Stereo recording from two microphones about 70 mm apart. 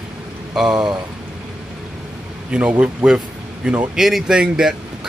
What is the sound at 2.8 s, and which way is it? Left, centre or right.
Speech, centre.